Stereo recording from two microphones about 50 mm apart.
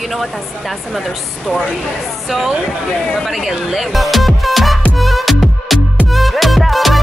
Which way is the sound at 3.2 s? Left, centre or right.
Centre.